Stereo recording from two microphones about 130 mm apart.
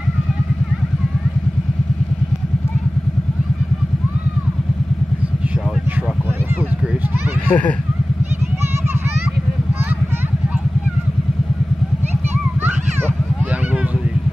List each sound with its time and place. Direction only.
7.4 s speech: 10° left (ahead or behind)